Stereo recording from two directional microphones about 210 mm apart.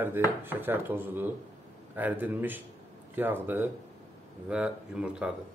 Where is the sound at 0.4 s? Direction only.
10° right (ahead or behind).